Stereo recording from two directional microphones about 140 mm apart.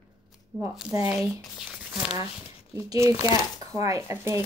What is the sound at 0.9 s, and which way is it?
Speech, 20° right (ahead or behind).